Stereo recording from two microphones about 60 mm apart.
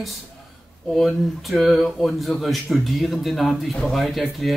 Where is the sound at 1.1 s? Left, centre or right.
Centre.